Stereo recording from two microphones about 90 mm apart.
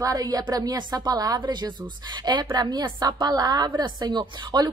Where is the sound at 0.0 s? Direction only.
45° right (ahead or behind).